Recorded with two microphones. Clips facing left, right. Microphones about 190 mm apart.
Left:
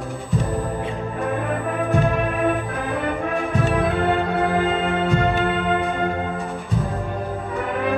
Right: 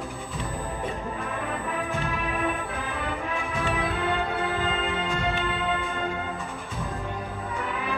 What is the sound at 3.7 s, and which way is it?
Music, 55° left (ahead or behind).